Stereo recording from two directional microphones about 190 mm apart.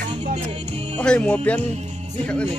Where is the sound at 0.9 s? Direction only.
5° left (ahead or behind).